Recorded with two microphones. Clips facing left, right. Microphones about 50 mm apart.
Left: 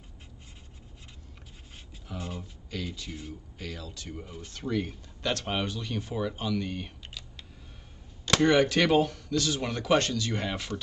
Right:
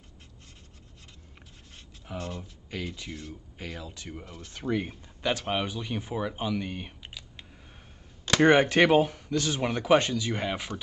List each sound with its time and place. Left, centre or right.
2.1 s speech: centre
2.7 s speech: right
5.3 s speech: centre
8.4 s speech: right; by 10.8 s centre